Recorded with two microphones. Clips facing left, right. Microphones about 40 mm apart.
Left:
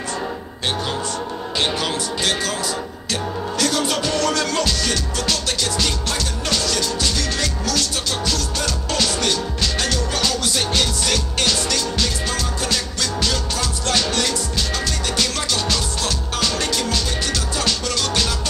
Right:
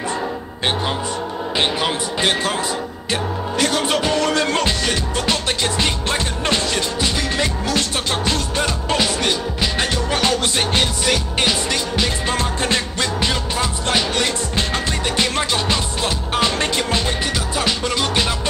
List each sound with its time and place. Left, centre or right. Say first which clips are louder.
1.6 s speech: right 2 dB; right
3.1 s music: right 2 dB; right